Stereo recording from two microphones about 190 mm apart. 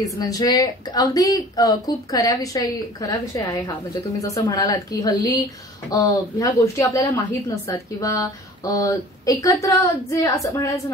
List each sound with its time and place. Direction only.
0.0 s a woman's voice: 20° left (ahead or behind)